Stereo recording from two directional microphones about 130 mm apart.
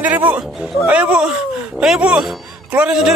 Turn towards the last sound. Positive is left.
turn(degrees=-5)  # may be behind; listen again after turning